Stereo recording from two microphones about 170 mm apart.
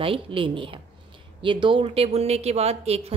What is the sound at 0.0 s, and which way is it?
A woman's voice, 30° right (ahead or behind).